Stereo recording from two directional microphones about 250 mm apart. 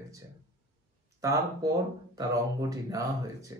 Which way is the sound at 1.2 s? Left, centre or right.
Centre.